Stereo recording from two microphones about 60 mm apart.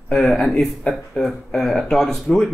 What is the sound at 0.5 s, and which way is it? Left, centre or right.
Speech, centre.